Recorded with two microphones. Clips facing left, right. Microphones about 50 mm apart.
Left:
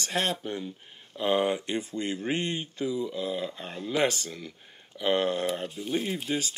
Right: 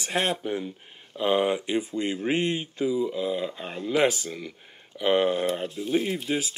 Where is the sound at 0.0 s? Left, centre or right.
Right.